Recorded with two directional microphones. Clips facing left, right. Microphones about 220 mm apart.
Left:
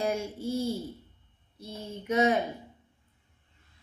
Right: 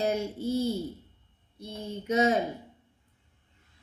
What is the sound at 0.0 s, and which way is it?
Speech, 20° right (ahead or behind).